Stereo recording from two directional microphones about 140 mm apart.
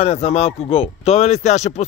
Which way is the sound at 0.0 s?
50° left (ahead or behind).